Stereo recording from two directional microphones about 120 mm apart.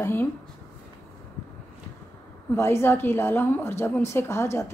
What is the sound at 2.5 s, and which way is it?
A woman's voice, 20° left (ahead or behind).